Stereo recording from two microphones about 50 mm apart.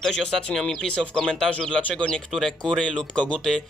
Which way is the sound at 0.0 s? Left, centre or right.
Centre.